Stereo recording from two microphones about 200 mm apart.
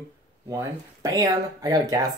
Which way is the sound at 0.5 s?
15° right (ahead or behind).